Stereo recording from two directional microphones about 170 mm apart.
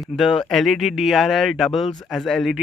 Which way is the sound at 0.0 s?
Centre (ahead or behind).